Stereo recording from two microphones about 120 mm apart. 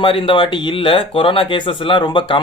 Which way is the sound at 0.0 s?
45° left (ahead or behind).